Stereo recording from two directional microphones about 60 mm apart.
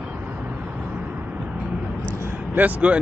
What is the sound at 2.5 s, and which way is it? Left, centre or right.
Speech, right.